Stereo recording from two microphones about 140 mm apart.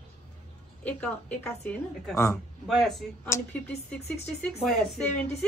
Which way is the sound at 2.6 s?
Centre (ahead or behind).